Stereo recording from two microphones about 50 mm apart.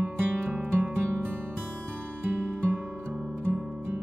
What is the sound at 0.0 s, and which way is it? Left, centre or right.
Music, right.